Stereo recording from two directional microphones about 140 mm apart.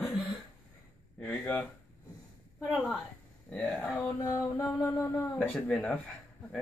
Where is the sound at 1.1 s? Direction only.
5° left (ahead or behind).